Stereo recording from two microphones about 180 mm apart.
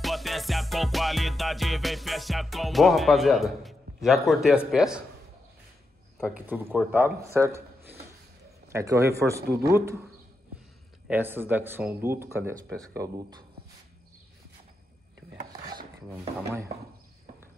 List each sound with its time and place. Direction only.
0.0 s music: centre (ahead or behind)
4.6 s a man's voice: 5° right (ahead or behind)
6.2 s speech: 10° right (ahead or behind)
11.1 s speech: 10° right (ahead or behind)